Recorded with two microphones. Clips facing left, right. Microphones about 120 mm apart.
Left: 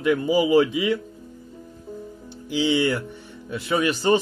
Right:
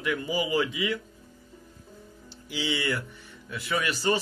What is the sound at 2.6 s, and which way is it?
Speech, 25° left (ahead or behind).